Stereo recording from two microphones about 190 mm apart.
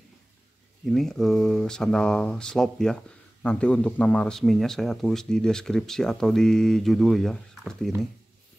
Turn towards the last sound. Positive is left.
turn(degrees=0)  # may be behind; listen again after turning